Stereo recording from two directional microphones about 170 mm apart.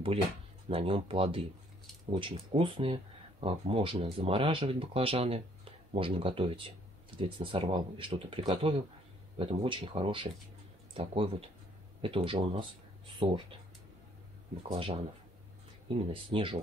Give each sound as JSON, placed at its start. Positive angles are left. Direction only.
{"t": 0.7, "sound": "speech", "side_deg": -35}
{"t": 14.7, "sound": "speech", "side_deg": -35}